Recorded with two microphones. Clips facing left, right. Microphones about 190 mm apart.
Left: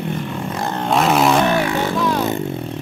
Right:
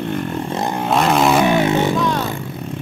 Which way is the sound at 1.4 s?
20° right (ahead or behind).